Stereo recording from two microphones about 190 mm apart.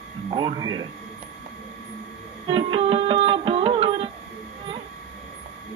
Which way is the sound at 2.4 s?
30° right (ahead or behind).